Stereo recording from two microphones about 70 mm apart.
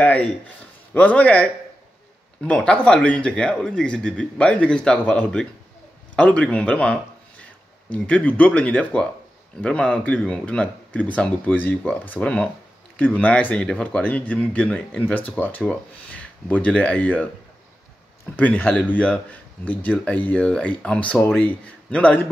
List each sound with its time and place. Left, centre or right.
0.9 s speech: left
18.3 s speech: left